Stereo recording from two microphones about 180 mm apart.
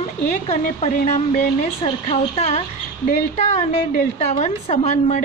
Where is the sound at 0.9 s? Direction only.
45° left (ahead or behind).